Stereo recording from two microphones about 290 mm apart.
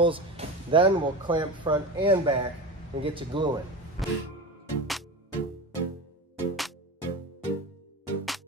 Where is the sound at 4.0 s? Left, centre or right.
Centre.